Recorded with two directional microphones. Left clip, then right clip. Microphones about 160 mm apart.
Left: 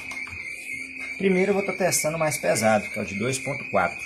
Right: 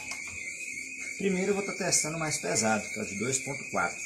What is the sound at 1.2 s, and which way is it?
Speech, 35° left (ahead or behind).